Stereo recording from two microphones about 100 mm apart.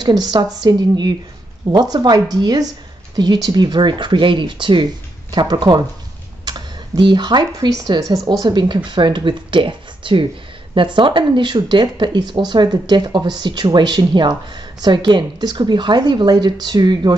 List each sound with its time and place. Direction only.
0.0 s a woman's voice: 45° right (ahead or behind)